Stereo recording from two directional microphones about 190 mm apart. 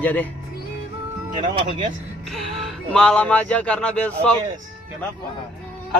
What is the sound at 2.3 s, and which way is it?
Speech, centre (ahead or behind).